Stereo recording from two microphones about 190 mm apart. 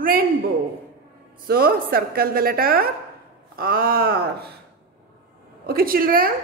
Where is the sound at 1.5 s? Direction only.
50° right (ahead or behind).